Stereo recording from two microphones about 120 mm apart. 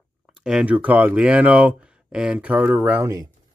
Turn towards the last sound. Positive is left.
turn(degrees=-15)  # may be behind; listen again after turning